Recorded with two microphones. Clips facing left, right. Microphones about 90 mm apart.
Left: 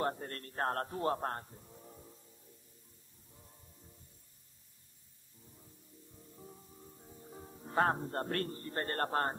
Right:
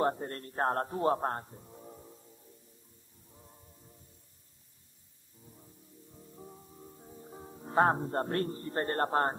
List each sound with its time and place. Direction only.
0.0 s a man's voice: 25° right (ahead or behind)
6.3 s music: 20° right (ahead or behind)